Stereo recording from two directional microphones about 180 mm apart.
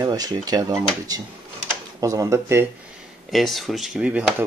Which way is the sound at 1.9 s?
20° right (ahead or behind).